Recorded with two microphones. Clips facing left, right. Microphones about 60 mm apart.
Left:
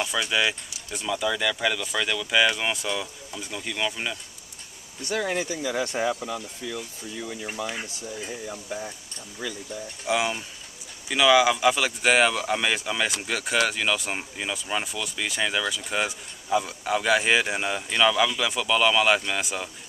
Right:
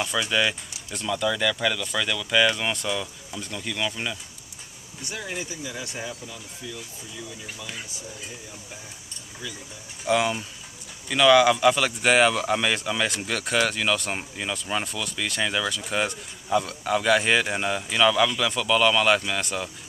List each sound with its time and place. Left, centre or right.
0.0 s speech: centre
5.0 s speech: left
10.0 s speech: centre